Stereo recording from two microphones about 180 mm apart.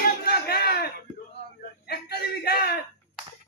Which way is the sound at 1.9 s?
60° left (ahead or behind).